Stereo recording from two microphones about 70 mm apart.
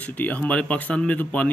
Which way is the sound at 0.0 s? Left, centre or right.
Left.